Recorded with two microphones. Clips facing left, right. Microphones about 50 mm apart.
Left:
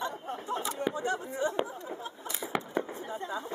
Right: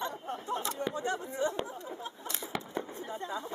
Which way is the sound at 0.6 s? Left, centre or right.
Centre.